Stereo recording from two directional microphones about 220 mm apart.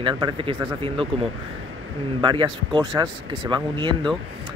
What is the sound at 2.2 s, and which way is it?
Speech, 20° right (ahead or behind).